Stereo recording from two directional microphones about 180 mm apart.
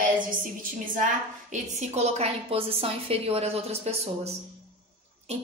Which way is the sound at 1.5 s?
40° right (ahead or behind).